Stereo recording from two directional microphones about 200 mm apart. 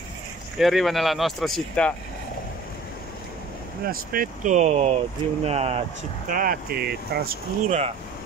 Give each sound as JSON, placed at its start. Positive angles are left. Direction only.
{"t": 0.6, "sound": "speech", "side_deg": 0}
{"t": 3.8, "sound": "speech", "side_deg": -45}
{"t": 6.3, "sound": "speech", "side_deg": -45}